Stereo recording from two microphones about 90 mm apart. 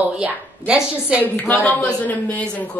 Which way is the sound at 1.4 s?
20° left (ahead or behind).